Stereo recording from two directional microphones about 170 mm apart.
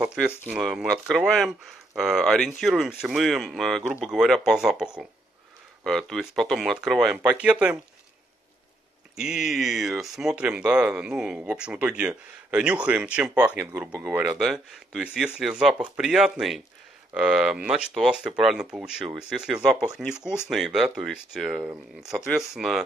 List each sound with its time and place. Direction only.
0.0 s speech: 5° right (ahead or behind)
9.1 s speech: 5° right (ahead or behind)
14.2 s speech: centre (ahead or behind)